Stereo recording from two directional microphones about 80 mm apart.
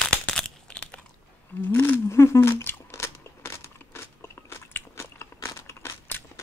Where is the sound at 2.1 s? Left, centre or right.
Left.